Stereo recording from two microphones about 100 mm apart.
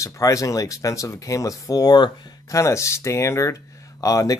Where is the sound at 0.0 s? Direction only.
35° left (ahead or behind).